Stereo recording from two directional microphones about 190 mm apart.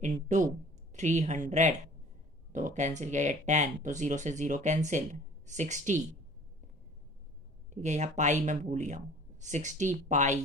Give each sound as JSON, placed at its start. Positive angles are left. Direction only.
{"t": 0.0, "sound": "speech", "side_deg": -40}
{"t": 7.7, "sound": "speech", "side_deg": -40}